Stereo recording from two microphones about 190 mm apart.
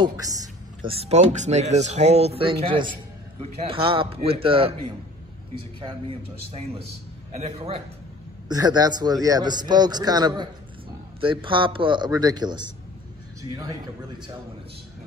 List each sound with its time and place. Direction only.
0.0 s a sound: 20° right (ahead or behind)
0.9 s a man's voice: 35° right (ahead or behind)
5.8 s a man's voice: 25° right (ahead or behind)
8.5 s a man's voice: 20° right (ahead or behind)